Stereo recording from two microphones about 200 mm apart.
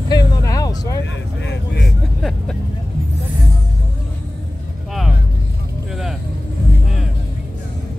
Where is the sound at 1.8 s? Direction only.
Centre (ahead or behind).